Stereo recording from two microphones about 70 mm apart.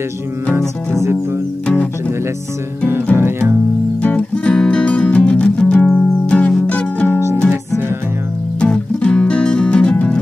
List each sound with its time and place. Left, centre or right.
0.6 s music: right
3.2 s music: right
4.0 s music: centre
8.5 s music: centre